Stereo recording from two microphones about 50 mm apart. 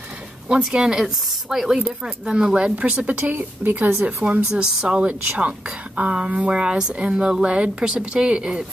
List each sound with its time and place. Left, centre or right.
0.7 s speech: centre
2.2 s speech: centre
2.8 s speech: right
3.2 s speech: right
4.6 s speech: right